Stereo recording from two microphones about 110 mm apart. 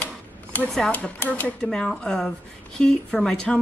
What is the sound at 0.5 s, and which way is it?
A woman's voice, 15° left (ahead or behind).